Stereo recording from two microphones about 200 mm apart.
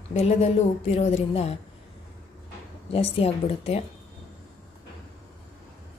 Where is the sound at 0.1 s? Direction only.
30° left (ahead or behind).